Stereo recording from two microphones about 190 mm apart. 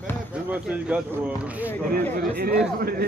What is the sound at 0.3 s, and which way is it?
Speech, 5° right (ahead or behind).